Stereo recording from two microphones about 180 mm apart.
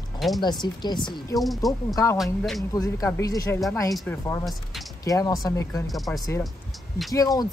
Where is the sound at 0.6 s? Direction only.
25° left (ahead or behind).